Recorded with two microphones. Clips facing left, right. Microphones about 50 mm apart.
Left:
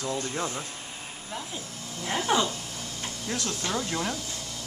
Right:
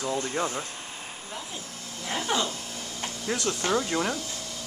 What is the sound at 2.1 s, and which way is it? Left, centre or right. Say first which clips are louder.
Speech: left 2 dB; centre.